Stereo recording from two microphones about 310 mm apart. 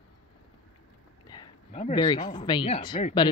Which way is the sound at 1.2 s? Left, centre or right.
Centre.